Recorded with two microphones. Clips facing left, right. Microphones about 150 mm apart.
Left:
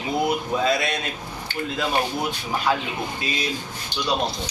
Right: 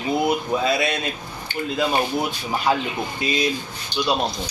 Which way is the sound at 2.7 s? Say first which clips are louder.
Right 2 dB; 20° right (ahead or behind).